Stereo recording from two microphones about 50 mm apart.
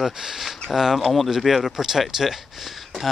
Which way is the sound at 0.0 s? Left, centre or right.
Centre.